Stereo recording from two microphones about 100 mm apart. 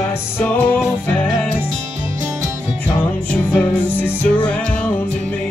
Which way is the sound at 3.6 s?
15° left (ahead or behind).